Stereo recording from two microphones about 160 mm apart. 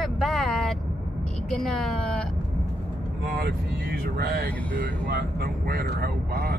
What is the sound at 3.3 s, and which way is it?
Speech, 75° right (ahead or behind).